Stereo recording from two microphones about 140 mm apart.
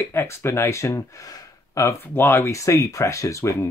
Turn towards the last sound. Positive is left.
turn(degrees=20)  # may be behind; listen again after turning